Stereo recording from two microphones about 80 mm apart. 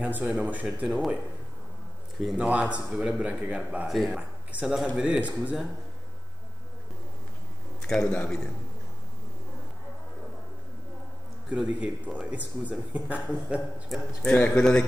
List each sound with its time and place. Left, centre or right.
0.0 s speech: centre
2.1 s speech: centre
7.8 s speech: centre
11.5 s speech: centre
14.3 s a man's voice: centre